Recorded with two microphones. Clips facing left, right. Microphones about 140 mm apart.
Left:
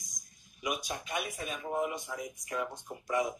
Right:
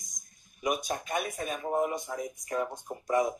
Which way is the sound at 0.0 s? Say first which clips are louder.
Left 1 dB; 50° right (ahead or behind).